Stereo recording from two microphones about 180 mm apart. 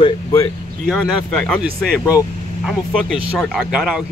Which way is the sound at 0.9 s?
5° left (ahead or behind).